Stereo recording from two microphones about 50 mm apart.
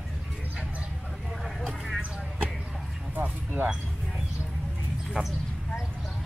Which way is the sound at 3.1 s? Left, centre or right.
Right.